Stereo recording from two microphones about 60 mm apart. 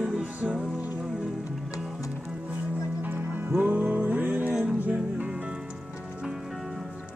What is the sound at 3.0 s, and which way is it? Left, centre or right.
Music, right.